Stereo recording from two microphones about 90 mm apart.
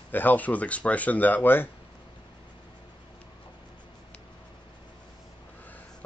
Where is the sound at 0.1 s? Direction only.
20° left (ahead or behind).